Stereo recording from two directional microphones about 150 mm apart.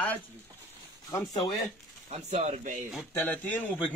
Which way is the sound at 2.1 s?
50° right (ahead or behind).